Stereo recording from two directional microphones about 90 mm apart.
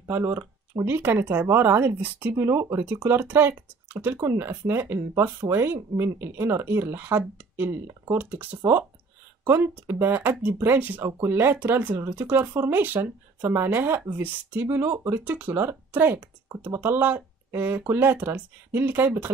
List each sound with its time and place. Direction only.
0.1 s speech: 30° right (ahead or behind)